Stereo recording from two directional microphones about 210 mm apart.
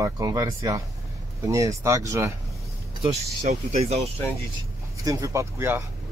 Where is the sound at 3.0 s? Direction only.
30° right (ahead or behind).